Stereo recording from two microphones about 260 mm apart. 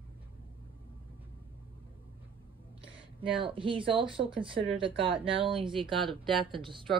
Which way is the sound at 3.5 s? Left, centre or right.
Centre.